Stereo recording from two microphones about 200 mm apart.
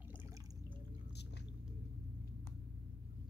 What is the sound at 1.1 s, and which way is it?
Squish, 55° left (ahead or behind).